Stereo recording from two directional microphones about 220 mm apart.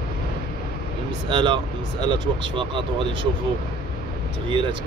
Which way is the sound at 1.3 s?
20° right (ahead or behind).